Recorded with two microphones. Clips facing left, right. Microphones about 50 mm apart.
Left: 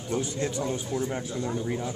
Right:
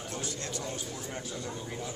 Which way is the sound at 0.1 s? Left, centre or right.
Centre.